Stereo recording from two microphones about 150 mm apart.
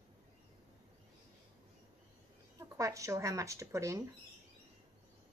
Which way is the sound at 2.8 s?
20° right (ahead or behind).